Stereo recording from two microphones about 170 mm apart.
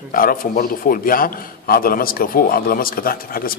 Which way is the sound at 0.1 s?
55° left (ahead or behind).